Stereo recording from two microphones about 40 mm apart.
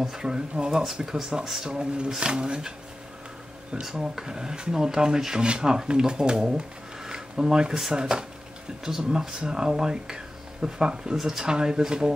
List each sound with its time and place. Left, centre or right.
0.0 s speech: centre
3.9 s speech: centre